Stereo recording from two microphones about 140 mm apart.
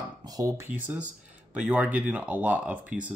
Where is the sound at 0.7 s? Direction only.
10° right (ahead or behind).